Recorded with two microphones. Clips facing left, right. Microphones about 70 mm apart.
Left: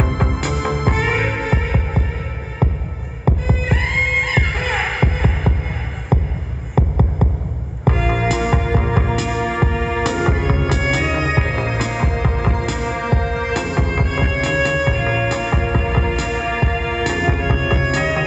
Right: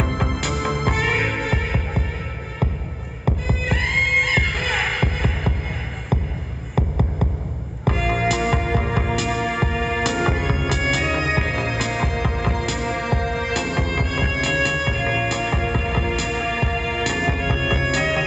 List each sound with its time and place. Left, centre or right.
0.0 s music: centre
3.3 s heart sounds: centre
6.7 s music: centre
13.2 s music: left
14.1 s music: centre
14.4 s music: centre
15.5 s music: centre